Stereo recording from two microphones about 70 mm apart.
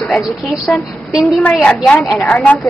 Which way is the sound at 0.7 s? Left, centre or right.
Centre.